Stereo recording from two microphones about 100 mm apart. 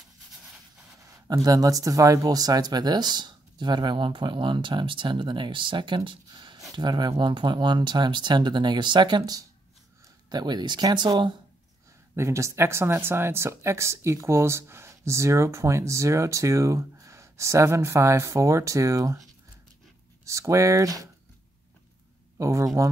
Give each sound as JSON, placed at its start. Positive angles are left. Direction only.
{"t": 1.2, "sound": "speech", "side_deg": -35}
{"t": 12.2, "sound": "speech", "side_deg": -30}
{"t": 20.2, "sound": "speech", "side_deg": -30}
{"t": 22.4, "sound": "speech", "side_deg": -30}